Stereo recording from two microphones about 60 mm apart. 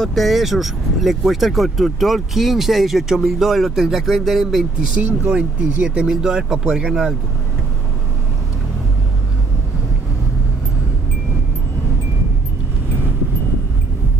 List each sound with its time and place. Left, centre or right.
0.0 s speech: centre
5.0 s speech: centre